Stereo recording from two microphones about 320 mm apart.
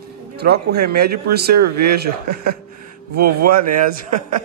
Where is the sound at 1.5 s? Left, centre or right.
Right.